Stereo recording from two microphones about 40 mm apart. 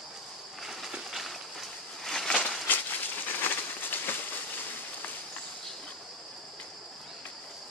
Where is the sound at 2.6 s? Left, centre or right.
Left.